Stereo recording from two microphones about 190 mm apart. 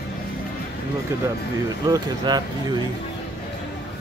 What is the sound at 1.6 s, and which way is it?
Speech, 20° right (ahead or behind).